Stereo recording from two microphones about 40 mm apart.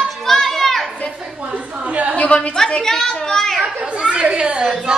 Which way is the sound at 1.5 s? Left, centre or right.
Right.